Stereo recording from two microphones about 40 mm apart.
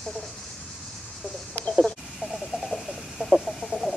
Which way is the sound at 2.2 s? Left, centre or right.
Centre.